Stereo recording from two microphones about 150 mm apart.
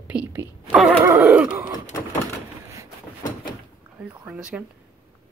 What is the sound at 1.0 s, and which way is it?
Speech, 10° right (ahead or behind).